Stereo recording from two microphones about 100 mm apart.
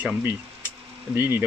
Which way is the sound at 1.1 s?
20° right (ahead or behind).